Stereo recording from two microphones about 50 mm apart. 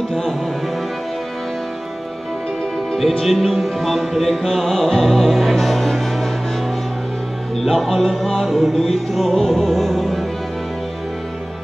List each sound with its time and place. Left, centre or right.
3.0 s music: centre
7.6 s music: centre